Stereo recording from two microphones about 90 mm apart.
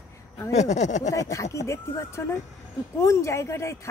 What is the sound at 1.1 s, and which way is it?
Speech, 35° left (ahead or behind).